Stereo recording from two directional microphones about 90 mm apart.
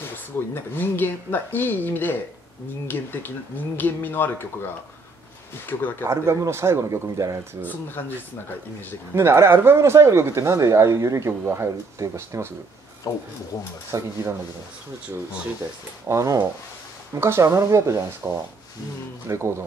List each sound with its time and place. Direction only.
0.7 s speech: 20° left (ahead or behind)
5.7 s speech: 20° left (ahead or behind)
6.0 s speech: 30° right (ahead or behind)
9.1 s speech: 30° right (ahead or behind)
13.0 s speech: 40° left (ahead or behind)
13.9 s speech: 35° right (ahead or behind)
16.1 s speech: 35° right (ahead or behind)